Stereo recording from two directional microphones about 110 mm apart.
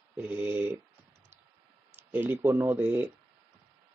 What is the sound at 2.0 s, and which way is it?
Speech, 15° right (ahead or behind).